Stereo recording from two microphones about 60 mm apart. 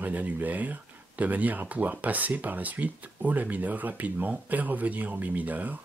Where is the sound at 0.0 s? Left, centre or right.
Right.